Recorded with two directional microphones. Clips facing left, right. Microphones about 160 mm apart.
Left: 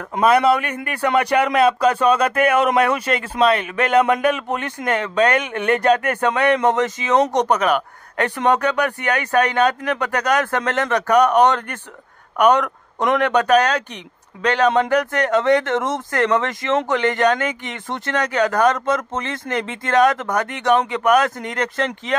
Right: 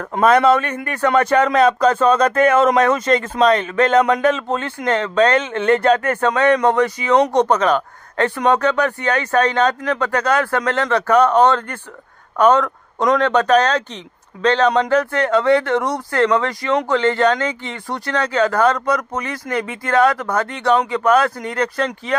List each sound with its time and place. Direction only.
0.3 s speech: 10° left (ahead or behind)